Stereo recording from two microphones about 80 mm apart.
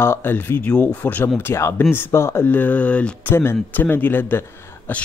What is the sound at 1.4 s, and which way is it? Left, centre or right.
A man's voice, left.